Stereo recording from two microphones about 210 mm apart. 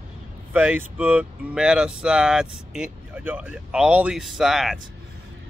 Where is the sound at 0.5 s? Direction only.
5° right (ahead or behind).